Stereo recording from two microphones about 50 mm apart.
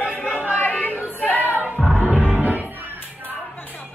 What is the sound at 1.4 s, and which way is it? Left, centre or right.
Music, right.